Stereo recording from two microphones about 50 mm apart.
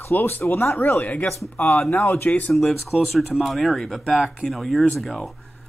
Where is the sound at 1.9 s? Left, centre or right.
Left.